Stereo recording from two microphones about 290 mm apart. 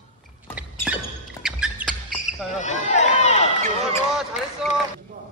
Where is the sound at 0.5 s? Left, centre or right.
Centre.